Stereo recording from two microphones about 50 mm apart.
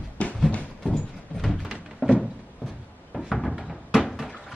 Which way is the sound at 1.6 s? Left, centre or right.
Centre.